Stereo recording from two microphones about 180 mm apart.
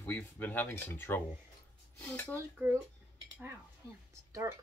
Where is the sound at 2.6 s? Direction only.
10° right (ahead or behind).